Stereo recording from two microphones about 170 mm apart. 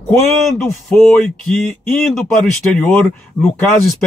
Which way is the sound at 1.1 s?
5° left (ahead or behind).